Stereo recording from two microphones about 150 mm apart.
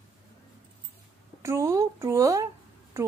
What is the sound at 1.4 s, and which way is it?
Speech, 20° right (ahead or behind).